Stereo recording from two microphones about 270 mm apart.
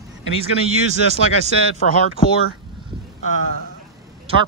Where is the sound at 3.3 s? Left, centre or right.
Right.